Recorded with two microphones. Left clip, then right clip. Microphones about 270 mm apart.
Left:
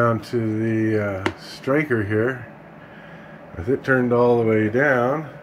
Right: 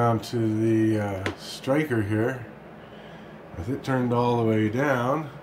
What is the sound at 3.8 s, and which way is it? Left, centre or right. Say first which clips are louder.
Speech: left 6 dB; centre.